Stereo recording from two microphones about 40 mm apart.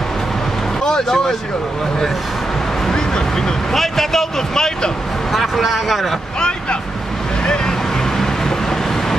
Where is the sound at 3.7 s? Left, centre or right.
Centre.